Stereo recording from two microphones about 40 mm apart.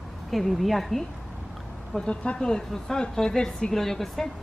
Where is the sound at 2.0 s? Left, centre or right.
Left.